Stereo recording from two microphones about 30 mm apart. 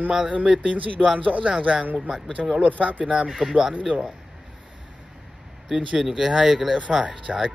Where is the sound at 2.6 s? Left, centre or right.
Right.